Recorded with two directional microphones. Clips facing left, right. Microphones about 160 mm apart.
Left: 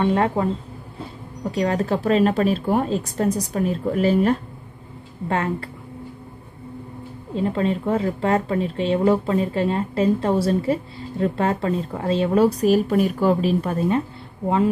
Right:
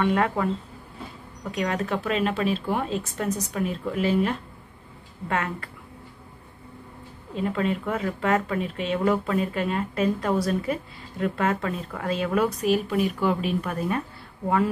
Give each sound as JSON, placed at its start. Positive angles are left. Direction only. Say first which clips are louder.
{"t": 0.0, "sound": "a woman's voice", "louder": "left 3 dB", "side_deg": 30}
{"t": 7.3, "sound": "a woman's voice", "louder": "left 4 dB", "side_deg": 30}